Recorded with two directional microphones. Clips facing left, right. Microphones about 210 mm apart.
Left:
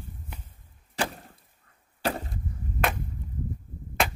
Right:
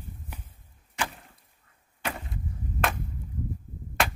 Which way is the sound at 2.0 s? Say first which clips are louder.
Left 6 dB; 35° left (ahead or behind).